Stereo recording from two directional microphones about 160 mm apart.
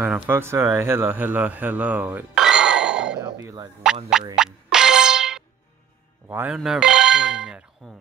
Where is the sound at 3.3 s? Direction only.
20° right (ahead or behind).